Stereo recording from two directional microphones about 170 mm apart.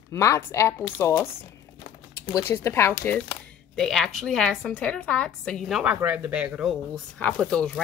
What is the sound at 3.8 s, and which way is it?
Speech, centre (ahead or behind).